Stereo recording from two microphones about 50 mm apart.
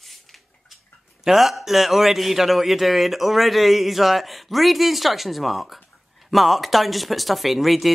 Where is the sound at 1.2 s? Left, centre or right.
Centre.